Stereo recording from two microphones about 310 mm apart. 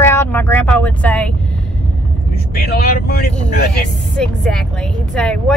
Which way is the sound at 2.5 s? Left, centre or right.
Left.